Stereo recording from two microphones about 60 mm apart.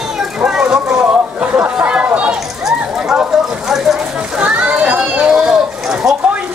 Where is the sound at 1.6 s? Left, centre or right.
Right.